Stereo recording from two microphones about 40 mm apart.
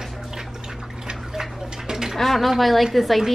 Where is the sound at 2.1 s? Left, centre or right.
Centre.